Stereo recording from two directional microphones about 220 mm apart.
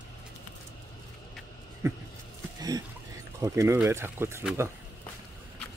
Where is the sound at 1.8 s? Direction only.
15° right (ahead or behind).